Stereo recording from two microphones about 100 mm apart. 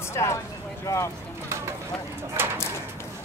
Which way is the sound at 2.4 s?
20° right (ahead or behind).